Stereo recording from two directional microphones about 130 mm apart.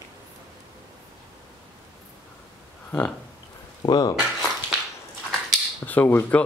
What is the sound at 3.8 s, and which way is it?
Speech, 35° left (ahead or behind).